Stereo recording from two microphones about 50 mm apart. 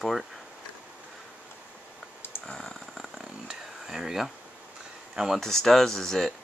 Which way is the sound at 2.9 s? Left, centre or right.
Centre.